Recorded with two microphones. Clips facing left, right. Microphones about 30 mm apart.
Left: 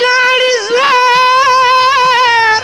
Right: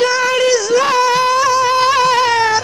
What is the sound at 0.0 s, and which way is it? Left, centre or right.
Music, left.